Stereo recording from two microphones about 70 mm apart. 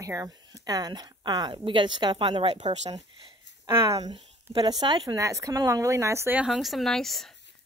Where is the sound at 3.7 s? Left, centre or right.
Right.